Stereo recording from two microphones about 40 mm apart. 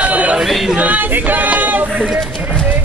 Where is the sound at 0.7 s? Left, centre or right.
Right.